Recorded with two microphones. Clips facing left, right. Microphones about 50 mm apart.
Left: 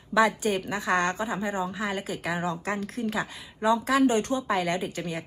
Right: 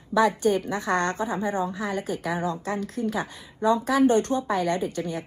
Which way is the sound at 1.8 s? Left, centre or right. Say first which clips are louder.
Right 2 dB; left.